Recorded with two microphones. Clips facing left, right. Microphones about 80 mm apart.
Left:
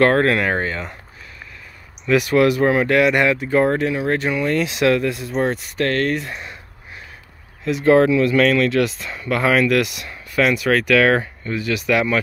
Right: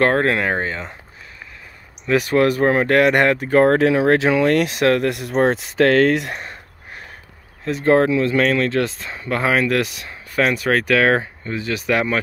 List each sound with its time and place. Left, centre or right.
0.0 s speech: right
2.0 s speech: right
4.6 s speech: right
5.1 s speech: right
6.3 s a sound: right
7.6 s speech: right